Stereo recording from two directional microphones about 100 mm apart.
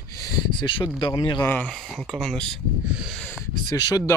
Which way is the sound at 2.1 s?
5° left (ahead or behind).